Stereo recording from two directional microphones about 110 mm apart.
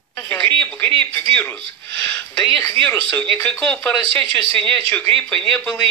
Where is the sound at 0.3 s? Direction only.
15° left (ahead or behind).